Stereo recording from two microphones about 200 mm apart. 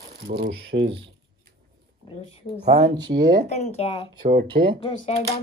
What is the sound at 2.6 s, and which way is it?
Speech, 50° right (ahead or behind).